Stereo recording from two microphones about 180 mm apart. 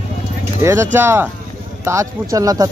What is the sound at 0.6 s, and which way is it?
Speech, 15° right (ahead or behind).